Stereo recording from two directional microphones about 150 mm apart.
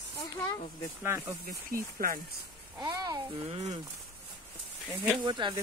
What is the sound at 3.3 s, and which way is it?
Speech, 40° right (ahead or behind).